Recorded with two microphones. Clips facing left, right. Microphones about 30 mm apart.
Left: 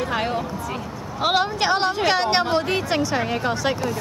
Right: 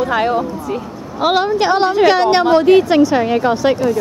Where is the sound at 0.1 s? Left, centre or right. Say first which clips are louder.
Right 8 dB; centre.